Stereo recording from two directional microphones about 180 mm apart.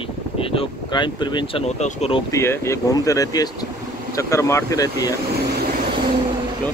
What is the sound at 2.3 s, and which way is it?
Speech, 15° left (ahead or behind).